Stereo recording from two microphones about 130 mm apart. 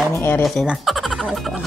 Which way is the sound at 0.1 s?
20° left (ahead or behind).